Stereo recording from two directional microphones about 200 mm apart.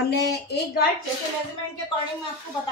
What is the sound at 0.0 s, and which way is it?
Speech, 55° left (ahead or behind).